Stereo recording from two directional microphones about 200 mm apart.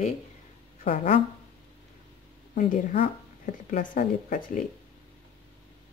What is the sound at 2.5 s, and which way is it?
Speech, 40° left (ahead or behind).